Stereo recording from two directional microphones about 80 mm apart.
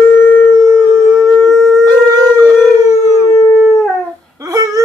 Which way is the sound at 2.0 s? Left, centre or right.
Right.